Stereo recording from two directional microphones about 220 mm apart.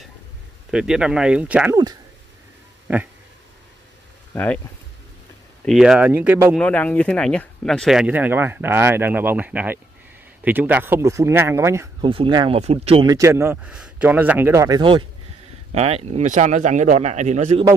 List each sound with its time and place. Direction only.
0.7 s speech: 5° right (ahead or behind)
4.3 s speech: 10° left (ahead or behind)
5.7 s speech: centre (ahead or behind)
6.6 s speech: 5° left (ahead or behind); by 17.6 s 30° right (ahead or behind)